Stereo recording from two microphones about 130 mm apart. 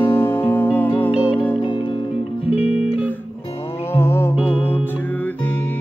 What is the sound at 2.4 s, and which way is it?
Music, 10° right (ahead or behind).